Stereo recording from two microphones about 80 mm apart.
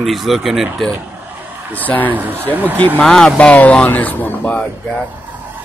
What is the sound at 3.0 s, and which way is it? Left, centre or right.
Speech, centre.